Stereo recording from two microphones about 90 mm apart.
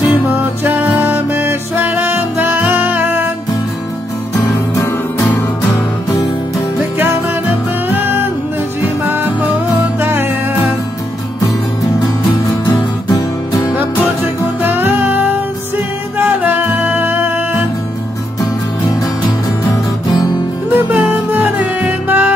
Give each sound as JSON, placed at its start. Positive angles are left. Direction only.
{"t": 0.7, "sound": "music", "side_deg": -20}
{"t": 7.9, "sound": "music", "side_deg": -20}
{"t": 12.6, "sound": "music", "side_deg": 50}
{"t": 13.7, "sound": "music", "side_deg": -20}
{"t": 16.2, "sound": "music", "side_deg": -20}
{"t": 19.7, "sound": "music", "side_deg": 45}
{"t": 20.7, "sound": "music", "side_deg": -20}